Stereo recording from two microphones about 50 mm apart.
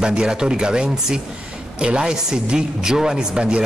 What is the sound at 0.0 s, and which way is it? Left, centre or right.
Speech, centre.